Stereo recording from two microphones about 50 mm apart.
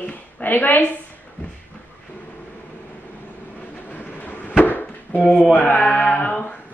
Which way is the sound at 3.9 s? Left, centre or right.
Left.